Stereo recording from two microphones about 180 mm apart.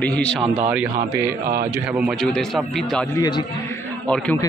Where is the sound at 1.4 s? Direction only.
55° right (ahead or behind).